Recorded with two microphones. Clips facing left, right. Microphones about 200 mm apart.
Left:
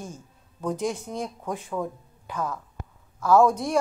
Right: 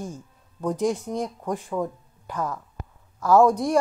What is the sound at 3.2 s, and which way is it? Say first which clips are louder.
Speech: right 2 dB; 15° right (ahead or behind).